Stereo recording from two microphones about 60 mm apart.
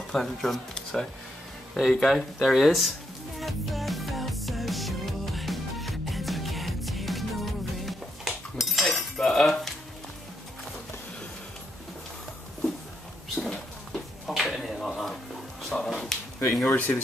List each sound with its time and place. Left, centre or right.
0.1 s speech: centre
3.3 s music: centre
13.4 s music: centre
14.2 s a sound: centre
16.6 s speech: left